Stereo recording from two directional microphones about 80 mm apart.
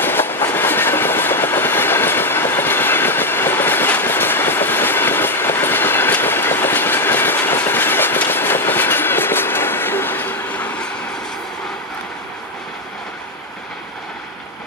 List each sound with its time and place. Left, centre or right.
0.0 s train: left